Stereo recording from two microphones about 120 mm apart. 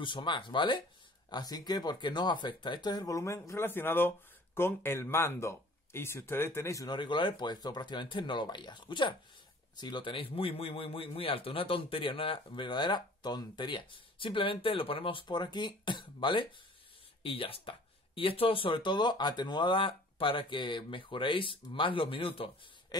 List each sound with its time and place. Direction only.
0.0 s speech: 40° left (ahead or behind); by 6.9 s 25° left (ahead or behind)
6.9 s speech: 40° left (ahead or behind)